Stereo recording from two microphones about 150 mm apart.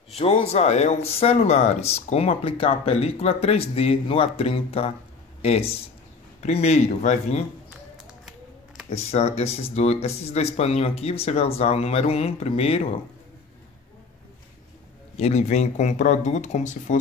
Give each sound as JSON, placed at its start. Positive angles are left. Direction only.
{"t": 0.1, "sound": "speech", "side_deg": 40}
{"t": 8.8, "sound": "speech", "side_deg": 45}
{"t": 15.1, "sound": "speech", "side_deg": 45}